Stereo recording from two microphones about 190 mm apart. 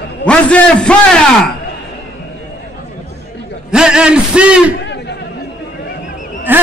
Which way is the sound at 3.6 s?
5° right (ahead or behind).